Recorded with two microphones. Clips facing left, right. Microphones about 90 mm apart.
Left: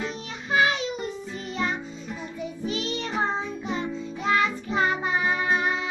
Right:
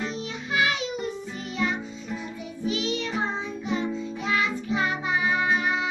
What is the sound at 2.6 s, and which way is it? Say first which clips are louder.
Music: right 3 dB; 40° left (ahead or behind).